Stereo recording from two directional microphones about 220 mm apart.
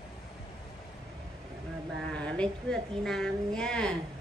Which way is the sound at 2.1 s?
5° left (ahead or behind).